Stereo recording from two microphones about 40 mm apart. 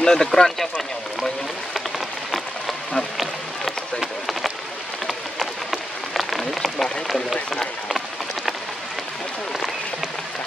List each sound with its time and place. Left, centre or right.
0.0 s speech: centre
5.0 s rain on surface: centre